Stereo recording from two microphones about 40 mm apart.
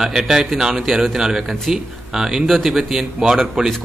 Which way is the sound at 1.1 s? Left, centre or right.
Centre.